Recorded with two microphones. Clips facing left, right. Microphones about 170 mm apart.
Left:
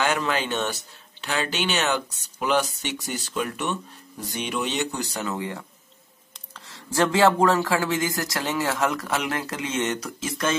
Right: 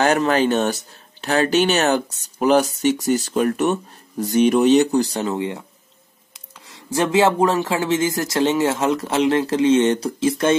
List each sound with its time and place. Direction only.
0.0 s speech: 45° right (ahead or behind); by 5.7 s 20° right (ahead or behind)
6.7 s speech: 15° right (ahead or behind)